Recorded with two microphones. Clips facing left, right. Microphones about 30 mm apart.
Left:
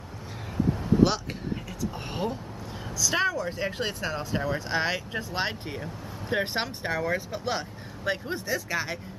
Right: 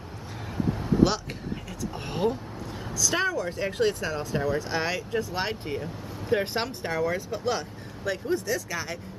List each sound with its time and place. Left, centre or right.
0.8 s vehicle: centre
3.0 s speech: centre